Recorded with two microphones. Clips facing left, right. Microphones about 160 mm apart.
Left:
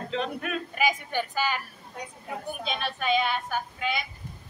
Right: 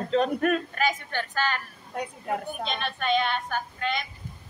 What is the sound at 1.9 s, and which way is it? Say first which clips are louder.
Speech: right 7 dB; 65° right (ahead or behind).